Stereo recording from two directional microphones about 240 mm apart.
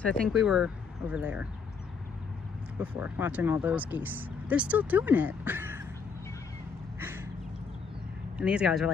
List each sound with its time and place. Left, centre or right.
0.0 s speech: centre
2.8 s speech: centre
7.0 s a sound: centre
8.4 s speech: centre